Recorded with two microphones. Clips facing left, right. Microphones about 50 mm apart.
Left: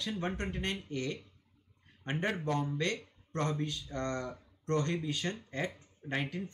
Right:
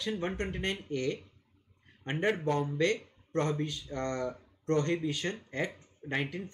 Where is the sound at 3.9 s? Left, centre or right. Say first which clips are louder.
Right 3 dB; right.